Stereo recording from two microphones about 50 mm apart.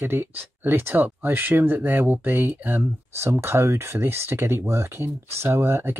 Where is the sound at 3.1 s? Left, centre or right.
Right.